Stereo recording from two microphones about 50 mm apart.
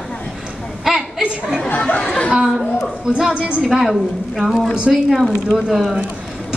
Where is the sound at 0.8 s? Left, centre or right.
Centre.